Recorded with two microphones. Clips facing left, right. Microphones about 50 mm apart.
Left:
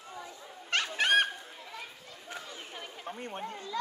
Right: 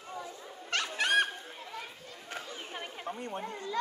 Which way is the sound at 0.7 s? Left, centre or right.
Left.